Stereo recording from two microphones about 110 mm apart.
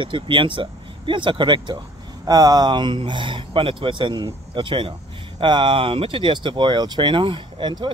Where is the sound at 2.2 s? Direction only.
35° right (ahead or behind).